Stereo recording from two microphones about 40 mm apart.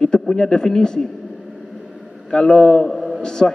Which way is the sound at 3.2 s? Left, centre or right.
Centre.